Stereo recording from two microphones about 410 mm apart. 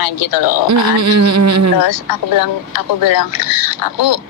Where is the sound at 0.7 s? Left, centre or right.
Right.